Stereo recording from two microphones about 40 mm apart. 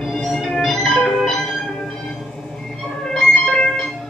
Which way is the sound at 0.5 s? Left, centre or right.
Centre.